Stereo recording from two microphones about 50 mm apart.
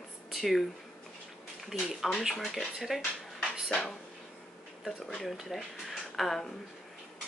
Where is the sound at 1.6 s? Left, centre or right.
Centre.